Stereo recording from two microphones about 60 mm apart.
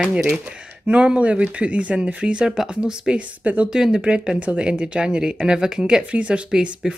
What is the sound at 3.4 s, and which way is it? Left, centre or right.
Speech, right.